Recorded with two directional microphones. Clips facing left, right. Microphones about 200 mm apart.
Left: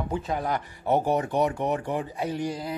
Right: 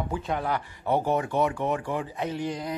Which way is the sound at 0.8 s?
15° left (ahead or behind).